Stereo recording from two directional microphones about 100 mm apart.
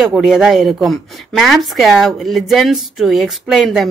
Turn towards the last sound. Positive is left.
turn(degrees=-5)  # may be behind; listen again after turning